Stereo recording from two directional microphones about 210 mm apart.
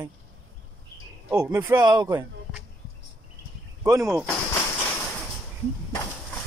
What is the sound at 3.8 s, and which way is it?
Speech, 15° right (ahead or behind).